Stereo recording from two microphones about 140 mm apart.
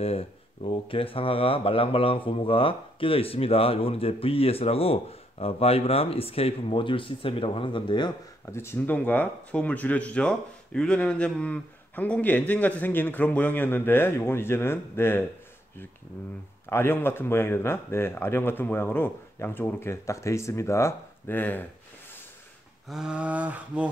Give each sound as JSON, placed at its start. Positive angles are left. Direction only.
{"t": 0.7, "sound": "speech", "side_deg": 40}
{"t": 8.5, "sound": "speech", "side_deg": 20}
{"t": 16.6, "sound": "speech", "side_deg": 15}
{"t": 22.8, "sound": "a sound", "side_deg": -5}